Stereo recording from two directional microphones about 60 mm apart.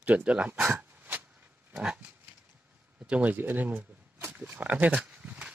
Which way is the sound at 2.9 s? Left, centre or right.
Centre.